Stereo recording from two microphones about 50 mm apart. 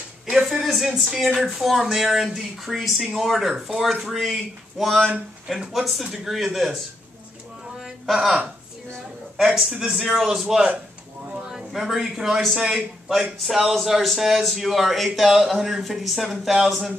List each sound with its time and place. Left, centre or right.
0.5 s a sound: centre
0.8 s speech: centre
8.1 s speech: centre
9.6 s a man's voice: centre
11.2 s a sound: right
11.5 s a man's voice: centre